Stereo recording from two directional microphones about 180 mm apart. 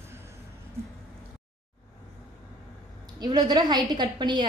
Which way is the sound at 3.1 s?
25° right (ahead or behind).